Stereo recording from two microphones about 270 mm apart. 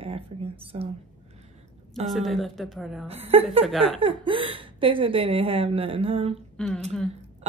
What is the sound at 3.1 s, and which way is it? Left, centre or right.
A woman's voice, right.